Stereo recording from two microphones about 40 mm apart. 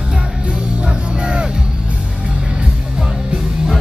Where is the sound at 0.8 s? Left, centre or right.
Right.